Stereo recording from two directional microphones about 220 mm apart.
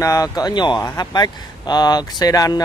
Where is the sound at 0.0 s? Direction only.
15° left (ahead or behind).